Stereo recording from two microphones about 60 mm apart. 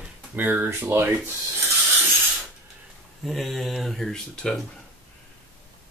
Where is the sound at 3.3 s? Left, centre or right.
Centre.